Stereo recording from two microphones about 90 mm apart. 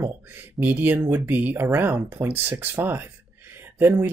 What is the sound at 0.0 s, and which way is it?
Speech, 25° right (ahead or behind).